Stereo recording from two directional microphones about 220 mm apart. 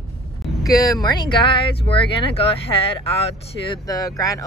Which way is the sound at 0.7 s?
15° left (ahead or behind).